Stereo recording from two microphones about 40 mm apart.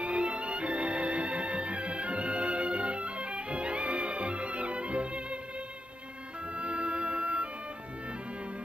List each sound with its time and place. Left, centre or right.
0.0 s music: right
6.5 s music: right